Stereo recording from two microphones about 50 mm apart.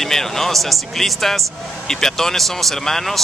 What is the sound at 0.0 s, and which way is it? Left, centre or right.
A man's voice, centre.